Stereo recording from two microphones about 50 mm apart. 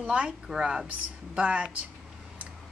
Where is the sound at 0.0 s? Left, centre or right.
Right.